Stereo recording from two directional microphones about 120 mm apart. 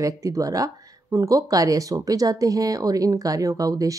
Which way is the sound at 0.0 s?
30° right (ahead or behind).